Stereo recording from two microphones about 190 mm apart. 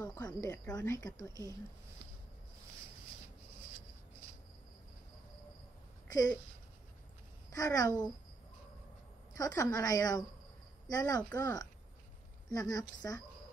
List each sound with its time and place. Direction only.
0.0 s speech: 20° left (ahead or behind)
6.0 s a sound: 20° left (ahead or behind)
7.5 s a woman's voice: 20° left (ahead or behind)
9.3 s a woman's voice: 20° left (ahead or behind)